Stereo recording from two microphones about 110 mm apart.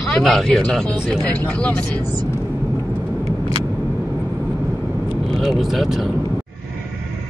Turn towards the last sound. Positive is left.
turn(degrees=0)  # may be behind; listen again after turning